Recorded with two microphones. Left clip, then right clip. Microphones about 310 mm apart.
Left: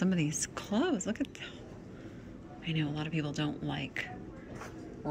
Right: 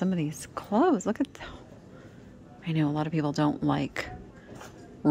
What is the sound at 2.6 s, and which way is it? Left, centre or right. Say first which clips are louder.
Speech: right 7 dB; centre.